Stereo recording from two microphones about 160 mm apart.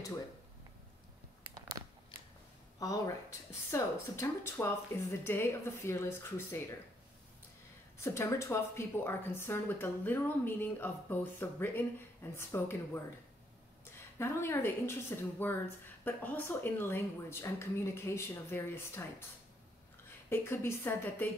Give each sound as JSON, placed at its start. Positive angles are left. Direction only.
{"t": 2.8, "sound": "speech", "side_deg": 20}
{"t": 8.0, "sound": "speech", "side_deg": 20}
{"t": 20.2, "sound": "speech", "side_deg": 15}